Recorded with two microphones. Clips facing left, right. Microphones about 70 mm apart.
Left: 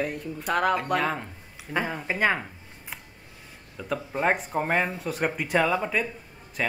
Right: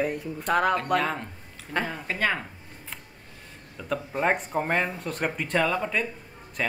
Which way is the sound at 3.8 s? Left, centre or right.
Centre.